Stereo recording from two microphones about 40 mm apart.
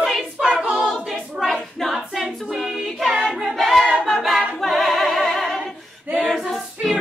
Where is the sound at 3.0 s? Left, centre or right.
Centre.